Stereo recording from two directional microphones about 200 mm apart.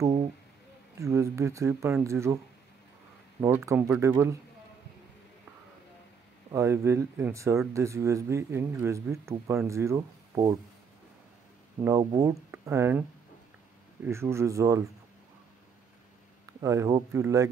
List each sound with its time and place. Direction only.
0.9 s speech: 15° right (ahead or behind)
6.5 s speech: 15° right (ahead or behind)
11.8 s speech: 15° right (ahead or behind)
14.0 s speech: 15° right (ahead or behind)
16.6 s speech: 15° right (ahead or behind)